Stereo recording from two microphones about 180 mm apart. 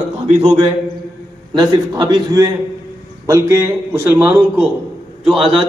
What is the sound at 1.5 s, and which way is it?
A man's voice, 25° right (ahead or behind).